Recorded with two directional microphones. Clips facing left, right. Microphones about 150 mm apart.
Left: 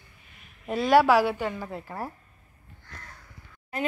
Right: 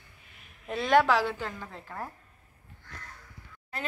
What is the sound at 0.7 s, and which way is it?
A woman's voice, 5° left (ahead or behind).